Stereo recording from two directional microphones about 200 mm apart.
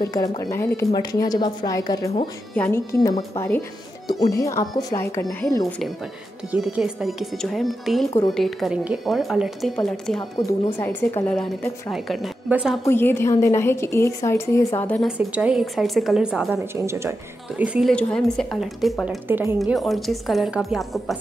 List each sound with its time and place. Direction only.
0.0 s a woman's voice: 20° left (ahead or behind)
6.5 s a woman's voice: 5° right (ahead or behind)
12.8 s a woman's voice: 10° left (ahead or behind)
15.0 s speech: 5° right (ahead or behind)
17.6 s speech: centre (ahead or behind)
19.2 s speech: 10° right (ahead or behind)
19.6 s speech: centre (ahead or behind)